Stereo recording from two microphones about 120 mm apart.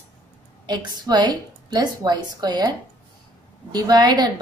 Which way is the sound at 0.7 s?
35° right (ahead or behind).